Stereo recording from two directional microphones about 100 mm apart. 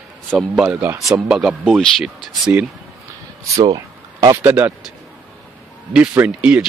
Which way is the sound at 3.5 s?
35° right (ahead or behind).